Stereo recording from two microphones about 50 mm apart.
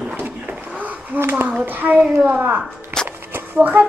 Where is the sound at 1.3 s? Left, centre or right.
Right.